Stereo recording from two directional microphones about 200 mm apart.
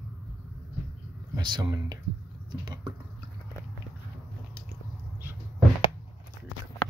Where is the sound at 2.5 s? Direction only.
20° right (ahead or behind).